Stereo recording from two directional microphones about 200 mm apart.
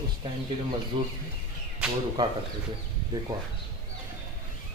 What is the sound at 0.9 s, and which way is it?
Speech, 25° right (ahead or behind).